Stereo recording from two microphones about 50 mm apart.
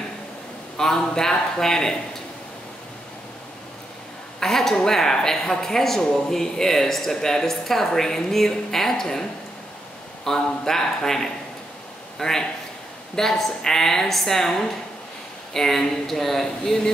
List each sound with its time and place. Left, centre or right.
0.7 s speech: centre
4.4 s speech: centre